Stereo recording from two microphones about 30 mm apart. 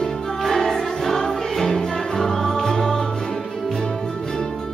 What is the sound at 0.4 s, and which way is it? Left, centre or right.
Music, centre.